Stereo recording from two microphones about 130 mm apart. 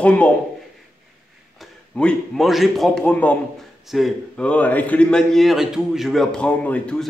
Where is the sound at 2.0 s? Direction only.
5° left (ahead or behind).